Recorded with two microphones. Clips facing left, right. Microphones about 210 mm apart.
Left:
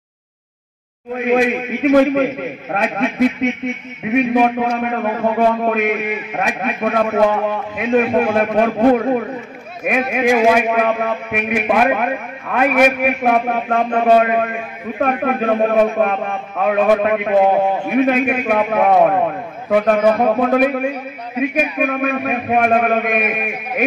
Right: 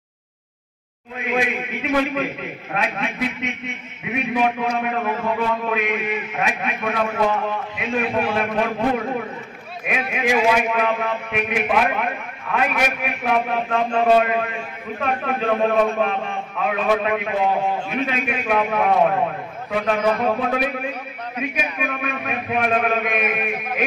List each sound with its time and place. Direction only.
1.1 s a man's voice: 50° left (ahead or behind)